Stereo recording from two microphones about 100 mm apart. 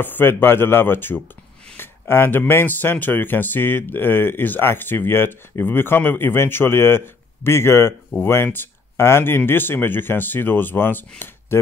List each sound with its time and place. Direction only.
0.0 s speech: 20° left (ahead or behind)